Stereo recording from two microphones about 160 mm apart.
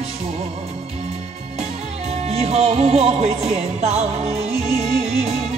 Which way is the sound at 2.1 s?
40° right (ahead or behind).